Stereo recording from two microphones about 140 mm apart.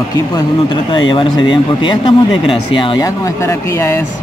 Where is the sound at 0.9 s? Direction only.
35° left (ahead or behind).